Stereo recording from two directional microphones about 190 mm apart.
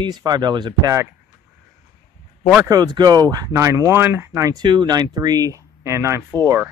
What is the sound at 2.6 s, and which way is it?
Speech, 20° right (ahead or behind).